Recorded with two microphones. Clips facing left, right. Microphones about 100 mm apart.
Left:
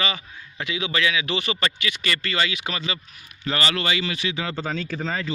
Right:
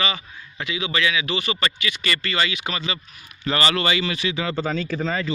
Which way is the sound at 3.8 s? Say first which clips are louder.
Right 2 dB; 65° right (ahead or behind).